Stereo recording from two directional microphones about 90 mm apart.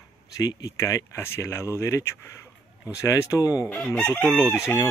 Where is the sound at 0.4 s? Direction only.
45° left (ahead or behind).